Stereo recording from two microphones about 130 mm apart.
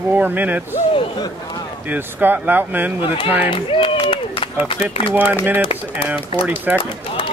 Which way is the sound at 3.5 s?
40° left (ahead or behind).